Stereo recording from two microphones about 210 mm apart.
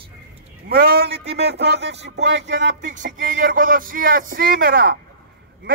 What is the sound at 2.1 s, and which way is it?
Music, 55° right (ahead or behind).